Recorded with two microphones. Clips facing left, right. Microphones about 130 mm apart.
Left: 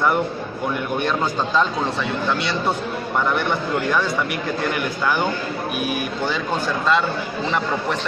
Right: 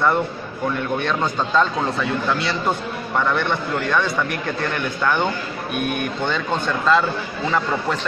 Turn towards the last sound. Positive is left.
turn(degrees=5)  # may be behind; listen again after turning